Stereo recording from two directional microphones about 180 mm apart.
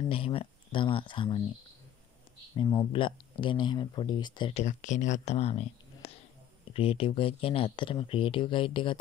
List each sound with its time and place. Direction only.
0.1 s speech: 30° left (ahead or behind)
2.5 s speech: 25° left (ahead or behind)